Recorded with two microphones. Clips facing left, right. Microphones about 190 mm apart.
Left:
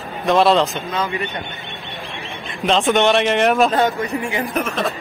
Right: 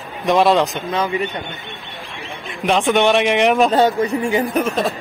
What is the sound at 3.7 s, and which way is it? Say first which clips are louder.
Speech: right 3 dB; 30° right (ahead or behind).